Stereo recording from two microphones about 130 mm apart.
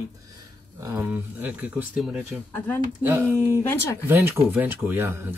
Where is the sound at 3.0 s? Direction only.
15° right (ahead or behind).